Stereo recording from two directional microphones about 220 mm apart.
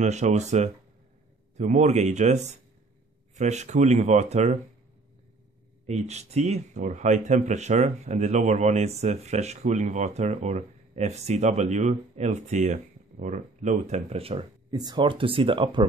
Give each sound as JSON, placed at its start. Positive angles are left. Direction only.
{"t": 0.0, "sound": "speech", "side_deg": -30}
{"t": 5.9, "sound": "speech", "side_deg": -30}